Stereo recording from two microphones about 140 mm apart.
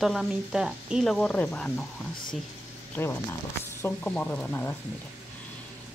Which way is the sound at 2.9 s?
15° left (ahead or behind).